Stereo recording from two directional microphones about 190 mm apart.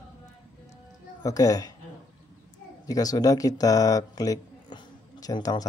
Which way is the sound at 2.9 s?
20° left (ahead or behind).